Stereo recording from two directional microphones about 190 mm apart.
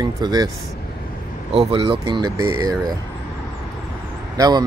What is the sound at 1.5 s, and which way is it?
Speech, 30° right (ahead or behind).